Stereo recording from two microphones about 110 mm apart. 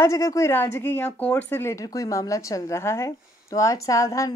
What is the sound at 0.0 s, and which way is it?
A woman's voice, 30° left (ahead or behind).